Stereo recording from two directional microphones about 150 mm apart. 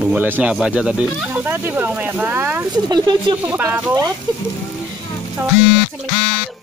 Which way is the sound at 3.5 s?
15° right (ahead or behind).